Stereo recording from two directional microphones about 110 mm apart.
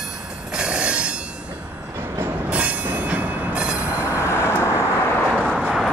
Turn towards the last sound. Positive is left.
turn(degrees=0)  # may be behind; listen again after turning